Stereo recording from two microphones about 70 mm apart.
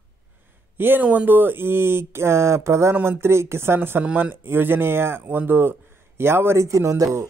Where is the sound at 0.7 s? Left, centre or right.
Right.